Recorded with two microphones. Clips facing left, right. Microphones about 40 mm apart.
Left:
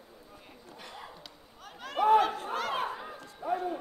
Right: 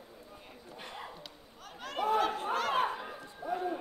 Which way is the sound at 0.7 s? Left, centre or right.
Right.